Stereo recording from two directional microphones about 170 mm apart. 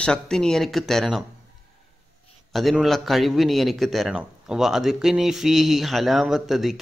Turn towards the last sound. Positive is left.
turn(degrees=0)  # may be behind; listen again after turning